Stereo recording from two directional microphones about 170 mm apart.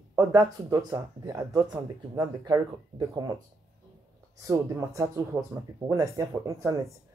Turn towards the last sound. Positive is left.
turn(degrees=-20)  # may be behind; listen again after turning